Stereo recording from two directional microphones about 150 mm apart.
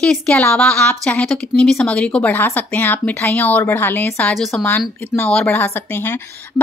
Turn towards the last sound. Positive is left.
turn(degrees=15)  # may be behind; listen again after turning